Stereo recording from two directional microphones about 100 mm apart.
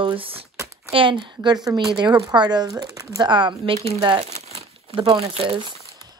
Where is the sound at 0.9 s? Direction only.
55° right (ahead or behind).